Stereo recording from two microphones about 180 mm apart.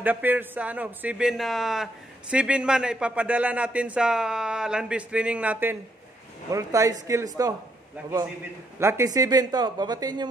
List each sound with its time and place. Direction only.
0.0 s a man's voice: 10° right (ahead or behind)
8.7 s speech: 15° right (ahead or behind)